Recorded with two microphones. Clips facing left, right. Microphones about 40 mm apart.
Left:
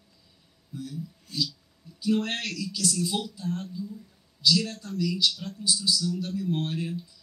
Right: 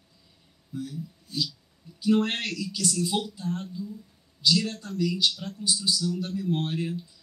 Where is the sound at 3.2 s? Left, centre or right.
Right.